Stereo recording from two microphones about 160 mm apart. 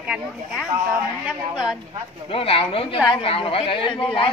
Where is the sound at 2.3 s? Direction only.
35° left (ahead or behind).